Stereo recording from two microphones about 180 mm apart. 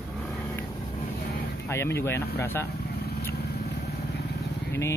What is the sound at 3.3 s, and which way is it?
Vehicle, 65° left (ahead or behind).